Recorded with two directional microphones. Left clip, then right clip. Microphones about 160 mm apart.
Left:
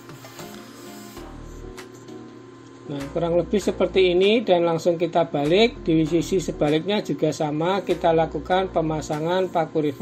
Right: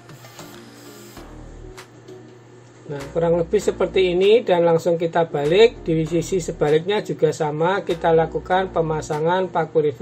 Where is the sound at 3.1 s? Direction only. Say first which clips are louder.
Right 3 dB; 35° left (ahead or behind).